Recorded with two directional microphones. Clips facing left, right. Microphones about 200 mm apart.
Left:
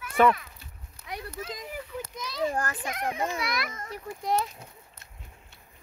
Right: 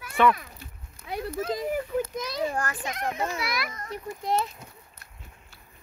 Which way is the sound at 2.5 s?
35° left (ahead or behind).